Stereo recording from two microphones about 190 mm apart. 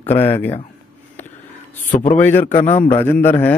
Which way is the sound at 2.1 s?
10° left (ahead or behind).